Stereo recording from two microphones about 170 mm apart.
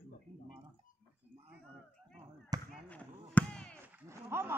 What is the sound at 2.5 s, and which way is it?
Basketball bounce, 20° right (ahead or behind).